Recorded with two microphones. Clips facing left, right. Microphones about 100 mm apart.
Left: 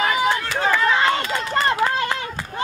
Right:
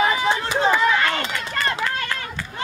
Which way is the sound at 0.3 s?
20° right (ahead or behind).